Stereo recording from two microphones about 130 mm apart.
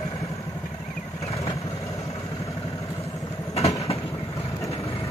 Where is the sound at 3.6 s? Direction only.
50° left (ahead or behind).